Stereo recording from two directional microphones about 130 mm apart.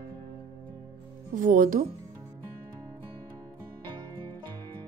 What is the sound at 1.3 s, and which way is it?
Speech, 90° right.